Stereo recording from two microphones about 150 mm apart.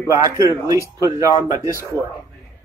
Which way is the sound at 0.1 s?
20° right (ahead or behind).